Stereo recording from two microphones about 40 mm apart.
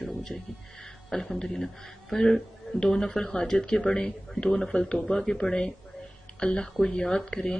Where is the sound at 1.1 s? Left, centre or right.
Centre.